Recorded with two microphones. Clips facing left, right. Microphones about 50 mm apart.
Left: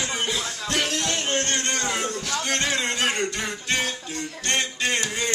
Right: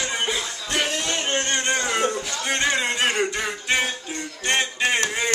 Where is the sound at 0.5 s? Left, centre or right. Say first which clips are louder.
Even; centre.